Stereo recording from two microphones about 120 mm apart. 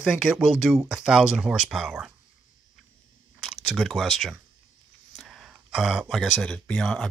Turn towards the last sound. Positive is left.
turn(degrees=5)  # may be behind; listen again after turning